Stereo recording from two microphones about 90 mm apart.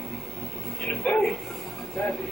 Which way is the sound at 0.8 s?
10° left (ahead or behind).